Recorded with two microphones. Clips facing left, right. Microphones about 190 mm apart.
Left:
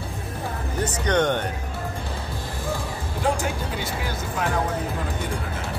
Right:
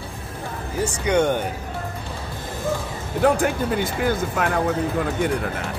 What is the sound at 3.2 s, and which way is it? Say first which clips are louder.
Speech: right 7 dB; 55° right (ahead or behind).